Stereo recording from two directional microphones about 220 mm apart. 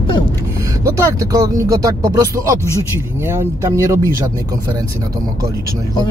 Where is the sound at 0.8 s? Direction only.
15° right (ahead or behind).